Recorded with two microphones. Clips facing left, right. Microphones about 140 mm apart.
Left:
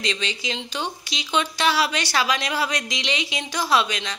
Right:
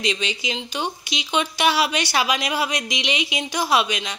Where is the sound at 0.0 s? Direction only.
15° right (ahead or behind).